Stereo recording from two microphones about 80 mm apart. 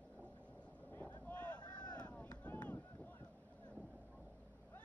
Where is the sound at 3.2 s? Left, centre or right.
Centre.